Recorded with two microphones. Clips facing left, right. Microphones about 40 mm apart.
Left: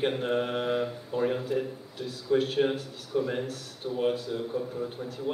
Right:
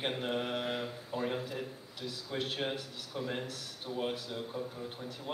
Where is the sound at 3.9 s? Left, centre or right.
Centre.